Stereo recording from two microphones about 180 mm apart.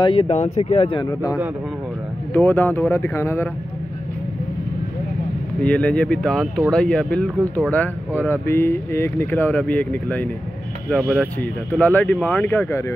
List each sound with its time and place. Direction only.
0.0 s speech: 30° left (ahead or behind)
2.3 s speech: 10° left (ahead or behind)
5.6 s speech: 5° left (ahead or behind)
11.7 s speech: 10° left (ahead or behind)